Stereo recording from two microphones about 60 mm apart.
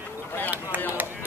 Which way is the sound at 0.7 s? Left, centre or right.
Right.